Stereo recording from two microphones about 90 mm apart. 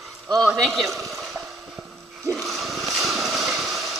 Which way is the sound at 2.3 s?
Centre (ahead or behind).